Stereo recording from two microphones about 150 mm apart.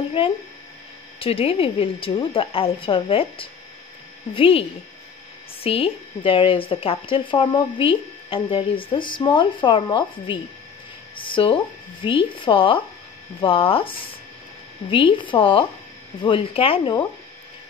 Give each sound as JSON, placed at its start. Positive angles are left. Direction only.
{"t": 1.2, "sound": "speech", "side_deg": 40}